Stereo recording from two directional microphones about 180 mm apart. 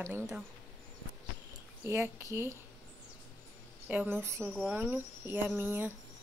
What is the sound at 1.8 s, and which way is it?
Speech, 15° right (ahead or behind).